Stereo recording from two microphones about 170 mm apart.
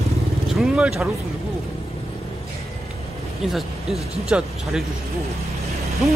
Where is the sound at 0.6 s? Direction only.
Centre (ahead or behind).